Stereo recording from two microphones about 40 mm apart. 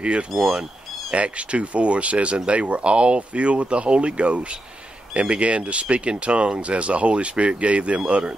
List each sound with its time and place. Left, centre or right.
0.0 s speech: right